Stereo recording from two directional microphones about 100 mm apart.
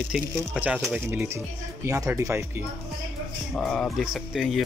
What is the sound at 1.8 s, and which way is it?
Speech, 30° right (ahead or behind).